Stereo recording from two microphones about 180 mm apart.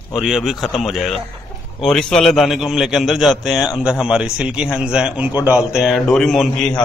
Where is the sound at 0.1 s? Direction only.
Centre (ahead or behind).